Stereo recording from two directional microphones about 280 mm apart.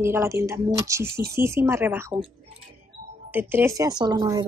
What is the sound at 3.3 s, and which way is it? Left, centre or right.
Speech, centre.